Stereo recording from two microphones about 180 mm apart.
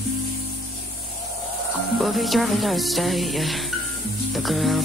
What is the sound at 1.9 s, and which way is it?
Music, centre (ahead or behind).